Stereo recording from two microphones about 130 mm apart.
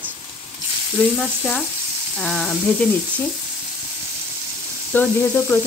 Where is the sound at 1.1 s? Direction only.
5° left (ahead or behind).